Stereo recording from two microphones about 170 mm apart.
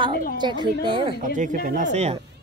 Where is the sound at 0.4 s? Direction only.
25° right (ahead or behind).